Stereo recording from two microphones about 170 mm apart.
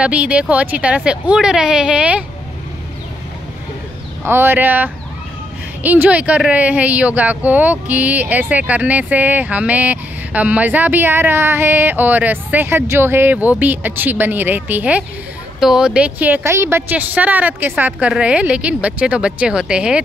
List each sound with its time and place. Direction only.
0.0 s speech: 5° right (ahead or behind)
4.2 s speech: 15° right (ahead or behind)